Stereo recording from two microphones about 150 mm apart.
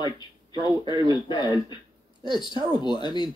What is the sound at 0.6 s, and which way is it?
Speech, 30° left (ahead or behind).